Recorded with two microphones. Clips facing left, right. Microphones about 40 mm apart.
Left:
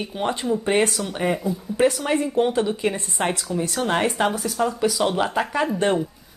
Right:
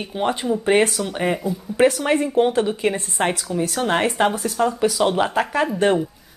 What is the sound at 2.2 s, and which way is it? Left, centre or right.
Speech, centre.